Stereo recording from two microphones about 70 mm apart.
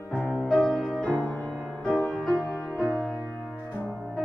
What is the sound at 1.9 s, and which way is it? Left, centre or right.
Music, centre.